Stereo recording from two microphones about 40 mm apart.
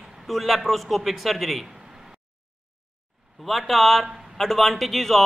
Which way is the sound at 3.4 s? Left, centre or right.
Centre.